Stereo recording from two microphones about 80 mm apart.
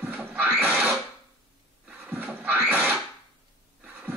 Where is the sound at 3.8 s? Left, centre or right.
Right.